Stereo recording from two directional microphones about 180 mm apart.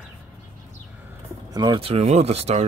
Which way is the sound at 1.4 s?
20° right (ahead or behind).